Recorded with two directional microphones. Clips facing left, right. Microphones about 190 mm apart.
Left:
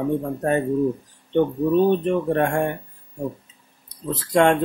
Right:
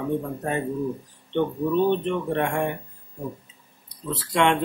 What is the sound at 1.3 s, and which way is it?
Speech, 45° left (ahead or behind).